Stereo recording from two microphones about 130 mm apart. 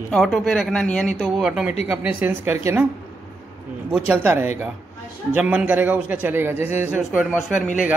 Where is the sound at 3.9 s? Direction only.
15° right (ahead or behind).